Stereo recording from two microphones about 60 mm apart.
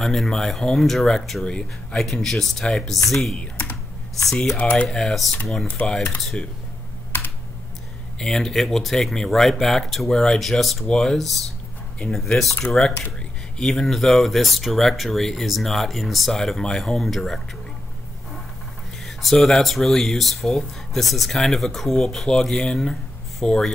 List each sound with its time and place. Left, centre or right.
0.0 s speech: centre
1.4 s speech: centre
2.0 s speech: centre
4.3 s speech: centre
4.6 s speech: left
4.9 s speech: centre
8.2 s speech: centre
10.4 s speech: centre
19.0 s speech: centre